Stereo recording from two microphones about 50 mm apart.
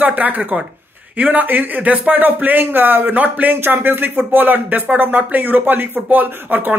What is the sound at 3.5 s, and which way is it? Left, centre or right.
Speech, right.